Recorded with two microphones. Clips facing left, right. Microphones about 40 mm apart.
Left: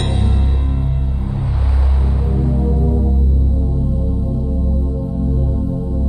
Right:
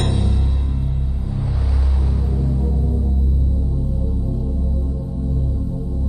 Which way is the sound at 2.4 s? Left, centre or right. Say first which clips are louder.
Left 7 dB; left.